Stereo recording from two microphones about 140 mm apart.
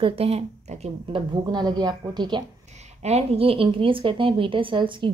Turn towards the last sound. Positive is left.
turn(degrees=-35)  # may be behind; listen again after turning